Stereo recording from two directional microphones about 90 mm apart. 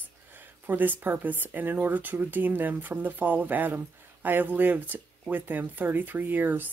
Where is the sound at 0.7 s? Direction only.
20° right (ahead or behind).